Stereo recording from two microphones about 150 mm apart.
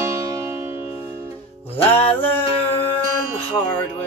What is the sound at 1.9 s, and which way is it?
Music, 15° left (ahead or behind).